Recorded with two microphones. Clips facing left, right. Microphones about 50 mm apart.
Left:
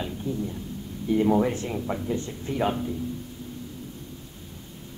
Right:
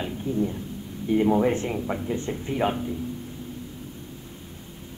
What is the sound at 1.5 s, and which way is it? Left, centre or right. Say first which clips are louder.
Speech: right 4 dB; right.